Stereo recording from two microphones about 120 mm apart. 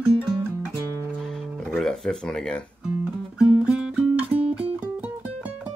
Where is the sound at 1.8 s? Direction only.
5° left (ahead or behind).